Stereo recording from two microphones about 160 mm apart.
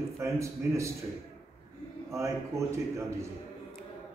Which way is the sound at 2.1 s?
20° right (ahead or behind).